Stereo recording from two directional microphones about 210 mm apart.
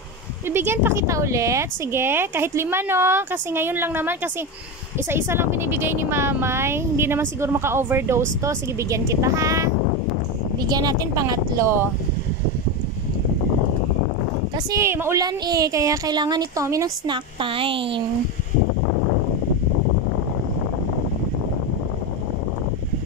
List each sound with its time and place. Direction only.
0.5 s speech: 10° right (ahead or behind)
14.7 s speech: 15° right (ahead or behind)